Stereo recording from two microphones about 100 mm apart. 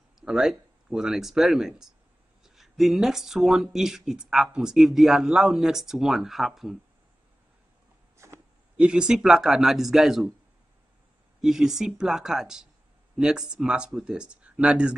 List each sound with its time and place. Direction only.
0.2 s speech: 5° right (ahead or behind)
8.2 s a sound: 30° right (ahead or behind)
8.7 s speech: 10° right (ahead or behind)
11.4 s speech: 5° right (ahead or behind)